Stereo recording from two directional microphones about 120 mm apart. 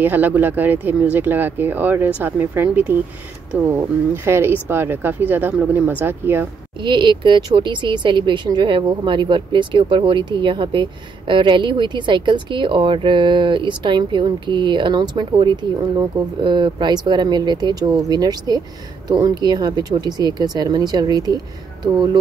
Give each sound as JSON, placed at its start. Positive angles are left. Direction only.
{"t": 0.0, "sound": "speech", "side_deg": -15}
{"t": 6.8, "sound": "speech", "side_deg": -40}